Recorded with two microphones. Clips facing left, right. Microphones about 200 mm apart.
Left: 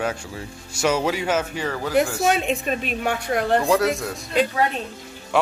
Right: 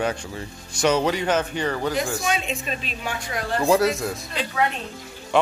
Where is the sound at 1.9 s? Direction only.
60° left (ahead or behind).